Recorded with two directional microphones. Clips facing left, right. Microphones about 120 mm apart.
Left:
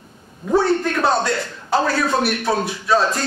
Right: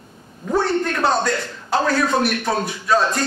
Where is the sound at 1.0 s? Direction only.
Centre (ahead or behind).